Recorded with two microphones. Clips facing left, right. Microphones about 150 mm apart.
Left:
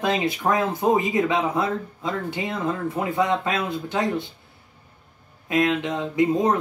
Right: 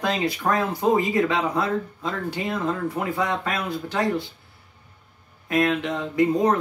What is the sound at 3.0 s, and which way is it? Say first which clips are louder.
Speech: left 3 dB; 20° left (ahead or behind).